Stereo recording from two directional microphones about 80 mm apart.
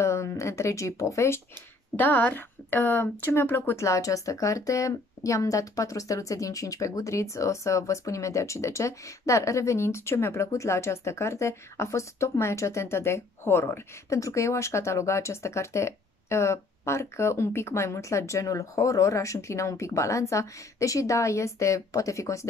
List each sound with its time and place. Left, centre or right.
0.0 s speech: left
2.0 s a woman's voice: left